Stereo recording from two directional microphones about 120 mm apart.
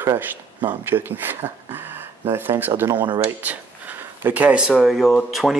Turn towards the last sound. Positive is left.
turn(degrees=0)  # may be behind; listen again after turning